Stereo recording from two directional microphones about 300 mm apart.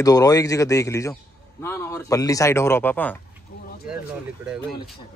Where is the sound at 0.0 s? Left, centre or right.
Centre.